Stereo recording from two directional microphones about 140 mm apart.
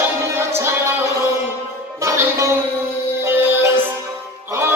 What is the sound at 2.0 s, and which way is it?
Music, 20° right (ahead or behind).